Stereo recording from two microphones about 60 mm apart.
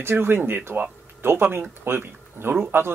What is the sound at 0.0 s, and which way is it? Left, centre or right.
Speech, right.